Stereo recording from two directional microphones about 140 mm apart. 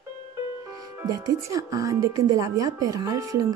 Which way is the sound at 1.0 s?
25° right (ahead or behind).